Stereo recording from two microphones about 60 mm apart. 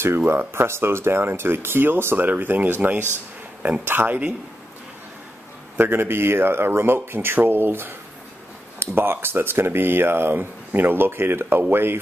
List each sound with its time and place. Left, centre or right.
0.6 s speech: right
5.8 s speech: right